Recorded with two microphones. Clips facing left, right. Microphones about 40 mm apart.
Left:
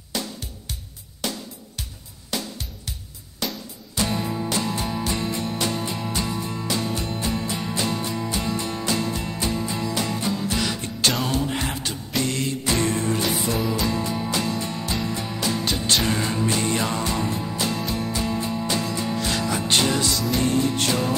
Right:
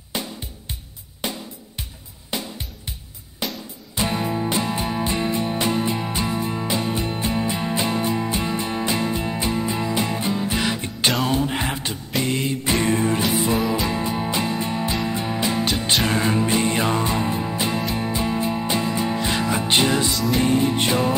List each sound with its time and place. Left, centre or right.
0.1 s music: right
1.2 s drum: right
2.3 s music: right
13.2 s music: centre
13.8 s music: right